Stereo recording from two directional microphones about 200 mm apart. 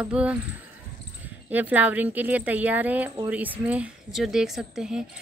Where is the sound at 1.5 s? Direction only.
10° right (ahead or behind).